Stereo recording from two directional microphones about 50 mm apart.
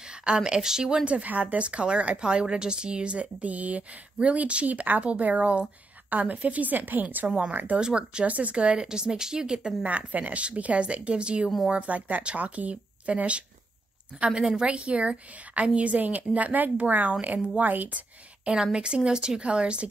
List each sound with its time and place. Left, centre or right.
0.1 s a woman's voice: centre
7.8 s speech: centre
8.3 s a woman's voice: right
8.7 s speech: centre
9.8 s a woman's voice: right
18.5 s speech: centre